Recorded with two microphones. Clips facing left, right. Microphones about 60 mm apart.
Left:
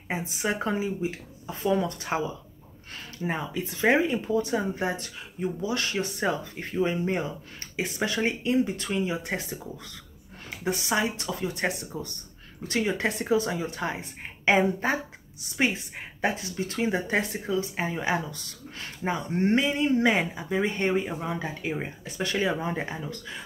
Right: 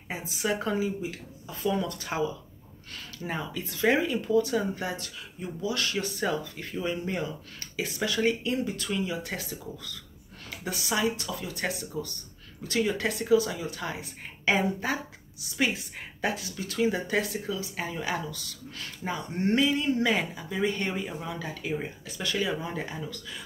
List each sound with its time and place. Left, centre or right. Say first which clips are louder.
0.1 s speech: left 1 dB; left